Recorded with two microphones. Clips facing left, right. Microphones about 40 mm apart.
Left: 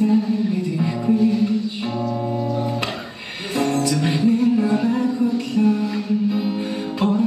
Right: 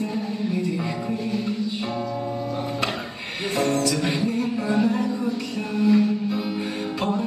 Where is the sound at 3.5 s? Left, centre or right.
Left.